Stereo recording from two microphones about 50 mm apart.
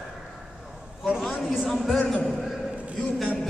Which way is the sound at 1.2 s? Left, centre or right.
Centre.